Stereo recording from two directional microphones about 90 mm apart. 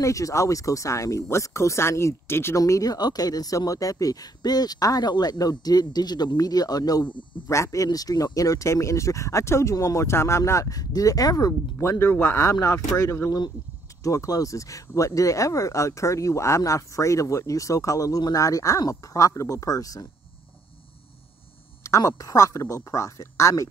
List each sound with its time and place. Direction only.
0.0 s speech: 35° left (ahead or behind); by 7.2 s 55° left (ahead or behind)
7.4 s speech: 35° left (ahead or behind)
12.1 s speech: 25° left (ahead or behind)
12.5 s speech: 40° left (ahead or behind)
21.8 s speech: 35° left (ahead or behind)